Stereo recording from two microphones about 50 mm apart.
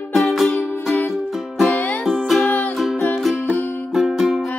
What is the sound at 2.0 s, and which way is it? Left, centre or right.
Music, centre.